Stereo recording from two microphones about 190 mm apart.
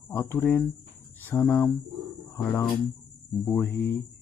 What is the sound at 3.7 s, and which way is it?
Speech, 60° left (ahead or behind).